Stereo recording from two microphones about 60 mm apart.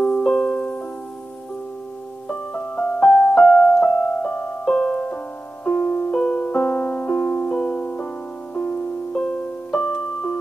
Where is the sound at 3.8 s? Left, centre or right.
Centre.